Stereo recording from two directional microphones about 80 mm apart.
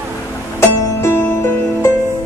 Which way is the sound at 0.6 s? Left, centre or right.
Left.